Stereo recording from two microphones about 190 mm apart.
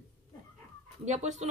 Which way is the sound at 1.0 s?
40° right (ahead or behind).